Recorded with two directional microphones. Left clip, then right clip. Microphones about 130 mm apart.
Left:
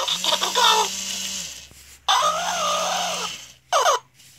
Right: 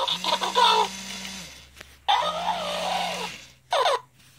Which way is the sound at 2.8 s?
15° right (ahead or behind).